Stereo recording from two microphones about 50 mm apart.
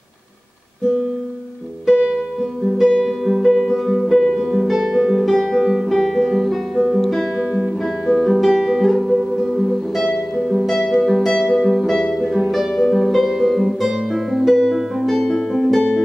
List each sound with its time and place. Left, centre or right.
1.9 s music: centre
3.1 s music: centre
5.2 s music: centre
7.8 s guitar: centre
10.4 s music: centre
15.2 s music: centre